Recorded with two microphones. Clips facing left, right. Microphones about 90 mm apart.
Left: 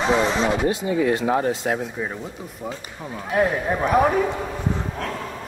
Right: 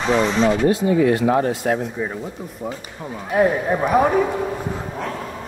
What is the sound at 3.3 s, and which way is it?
Speech, centre (ahead or behind).